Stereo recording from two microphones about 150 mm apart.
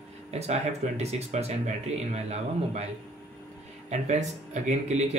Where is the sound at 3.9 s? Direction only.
50° right (ahead or behind).